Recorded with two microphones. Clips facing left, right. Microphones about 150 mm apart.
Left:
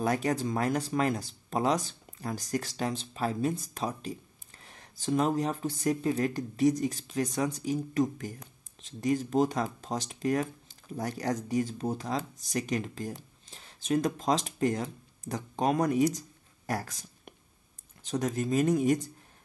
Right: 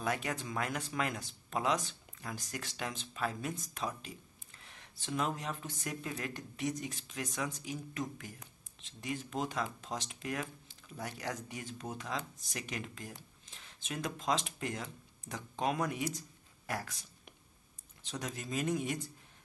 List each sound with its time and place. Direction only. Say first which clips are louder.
0.0 s speech: left 8 dB; 40° left (ahead or behind)